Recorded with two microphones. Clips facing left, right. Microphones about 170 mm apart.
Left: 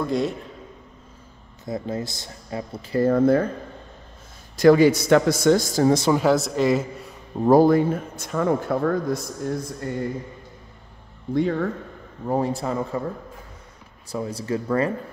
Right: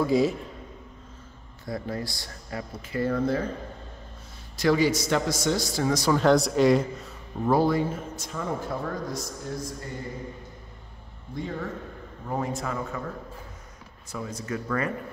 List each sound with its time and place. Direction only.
0.0 s a man's voice: centre (ahead or behind)
1.7 s speech: 20° left (ahead or behind)
2.9 s a man's voice: 45° left (ahead or behind)
4.6 s a man's voice: 50° left (ahead or behind)
5.9 s speech: 25° left (ahead or behind)
6.1 s a man's voice: 5° left (ahead or behind)
7.4 s speech: 45° left (ahead or behind)
11.3 s speech: 70° left (ahead or behind)
12.3 s speech: 30° left (ahead or behind)
14.1 s speech: 30° left (ahead or behind)